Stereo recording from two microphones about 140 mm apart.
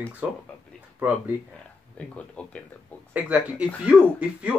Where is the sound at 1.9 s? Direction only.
10° left (ahead or behind).